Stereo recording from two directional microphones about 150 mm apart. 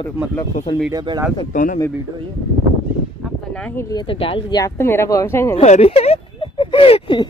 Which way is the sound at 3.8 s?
20° left (ahead or behind).